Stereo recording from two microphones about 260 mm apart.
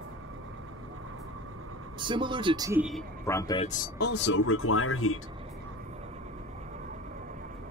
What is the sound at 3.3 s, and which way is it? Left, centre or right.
Speech, centre.